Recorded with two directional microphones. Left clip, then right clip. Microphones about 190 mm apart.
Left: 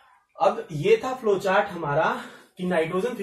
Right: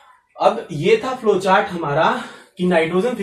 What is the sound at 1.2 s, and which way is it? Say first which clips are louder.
Speech: right 6 dB; 5° left (ahead or behind).